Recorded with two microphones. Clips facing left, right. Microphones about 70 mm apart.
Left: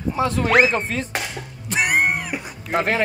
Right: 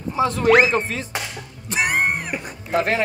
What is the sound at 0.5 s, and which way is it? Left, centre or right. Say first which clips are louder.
Speech: right 3 dB; centre.